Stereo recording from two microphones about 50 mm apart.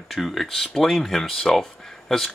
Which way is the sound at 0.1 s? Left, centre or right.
Centre.